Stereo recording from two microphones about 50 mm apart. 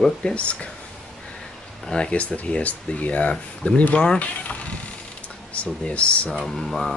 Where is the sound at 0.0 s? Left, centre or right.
Left.